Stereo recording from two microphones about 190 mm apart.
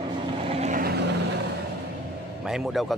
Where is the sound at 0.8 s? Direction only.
55° right (ahead or behind).